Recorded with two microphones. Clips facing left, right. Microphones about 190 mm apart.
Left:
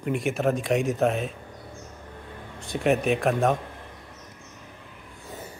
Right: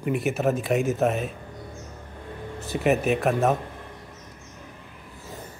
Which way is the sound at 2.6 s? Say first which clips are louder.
Right 1 dB; 5° right (ahead or behind).